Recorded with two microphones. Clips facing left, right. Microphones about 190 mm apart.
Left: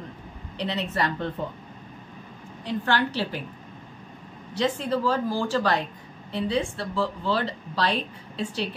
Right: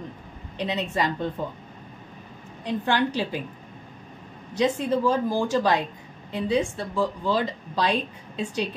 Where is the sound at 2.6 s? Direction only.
15° right (ahead or behind).